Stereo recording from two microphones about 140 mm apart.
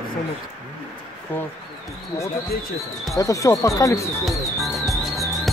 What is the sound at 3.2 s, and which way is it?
Speech, 25° left (ahead or behind).